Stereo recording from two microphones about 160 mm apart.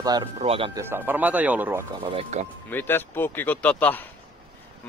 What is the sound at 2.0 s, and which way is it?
Speech, 35° right (ahead or behind).